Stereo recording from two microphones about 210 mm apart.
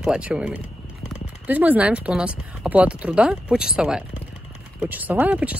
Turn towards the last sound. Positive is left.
turn(degrees=-5)  # may be behind; listen again after turning